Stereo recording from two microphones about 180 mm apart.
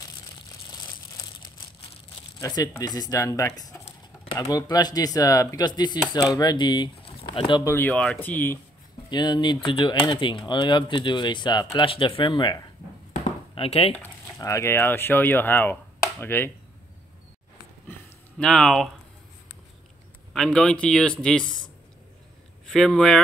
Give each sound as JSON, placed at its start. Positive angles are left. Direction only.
{"t": 0.7, "sound": "crumpling", "side_deg": 25}
{"t": 2.3, "sound": "speech", "side_deg": 20}
{"t": 7.6, "sound": "speech", "side_deg": 10}
{"t": 9.1, "sound": "speech", "side_deg": 25}
{"t": 13.1, "sound": "a sound", "side_deg": 35}
{"t": 13.9, "sound": "speech", "side_deg": 15}
{"t": 18.4, "sound": "a man's voice", "side_deg": 5}
{"t": 20.3, "sound": "a man's voice", "side_deg": 5}
{"t": 22.7, "sound": "a man's voice", "side_deg": 0}